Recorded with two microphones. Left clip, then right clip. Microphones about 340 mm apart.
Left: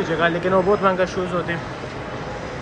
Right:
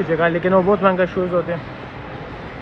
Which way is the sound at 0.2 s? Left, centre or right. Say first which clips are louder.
Right 2 dB; right.